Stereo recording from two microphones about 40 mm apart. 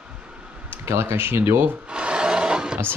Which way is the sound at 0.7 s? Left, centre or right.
Right.